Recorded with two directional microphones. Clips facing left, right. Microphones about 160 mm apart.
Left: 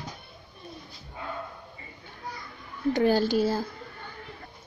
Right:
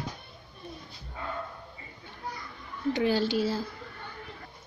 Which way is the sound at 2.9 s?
45° left (ahead or behind).